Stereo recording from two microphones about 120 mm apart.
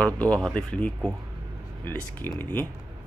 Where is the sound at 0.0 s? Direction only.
10° left (ahead or behind).